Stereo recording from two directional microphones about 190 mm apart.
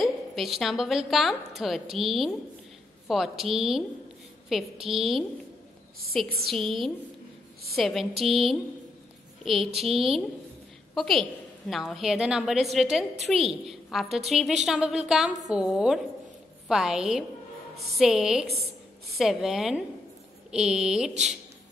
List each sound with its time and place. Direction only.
0.0 s a woman's voice: centre (ahead or behind)